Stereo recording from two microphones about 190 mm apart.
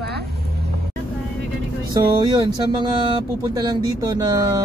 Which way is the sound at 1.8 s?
25° right (ahead or behind).